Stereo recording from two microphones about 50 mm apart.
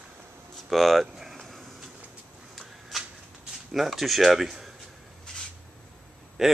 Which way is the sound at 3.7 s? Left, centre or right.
Centre.